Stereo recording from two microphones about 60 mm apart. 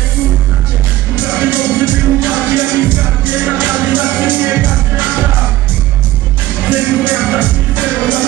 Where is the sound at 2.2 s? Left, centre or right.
Right.